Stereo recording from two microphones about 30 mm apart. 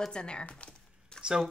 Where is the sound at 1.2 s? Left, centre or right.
Right.